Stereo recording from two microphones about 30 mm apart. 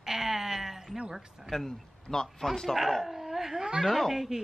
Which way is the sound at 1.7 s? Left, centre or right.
Centre.